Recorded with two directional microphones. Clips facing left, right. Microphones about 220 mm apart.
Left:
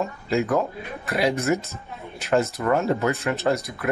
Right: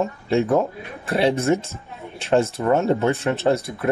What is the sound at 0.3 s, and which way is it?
Speech, 30° right (ahead or behind).